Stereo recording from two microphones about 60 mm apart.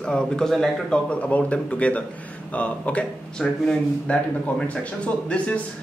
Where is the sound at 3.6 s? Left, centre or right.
Centre.